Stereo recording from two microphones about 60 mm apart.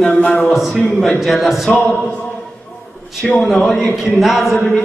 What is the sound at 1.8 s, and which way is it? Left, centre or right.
Speech, left.